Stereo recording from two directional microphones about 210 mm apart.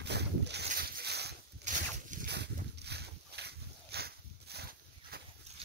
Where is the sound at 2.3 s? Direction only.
50° right (ahead or behind).